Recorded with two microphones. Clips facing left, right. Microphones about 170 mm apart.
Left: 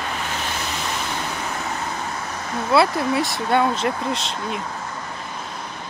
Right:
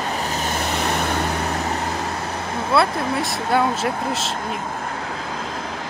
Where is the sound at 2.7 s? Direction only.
Centre (ahead or behind).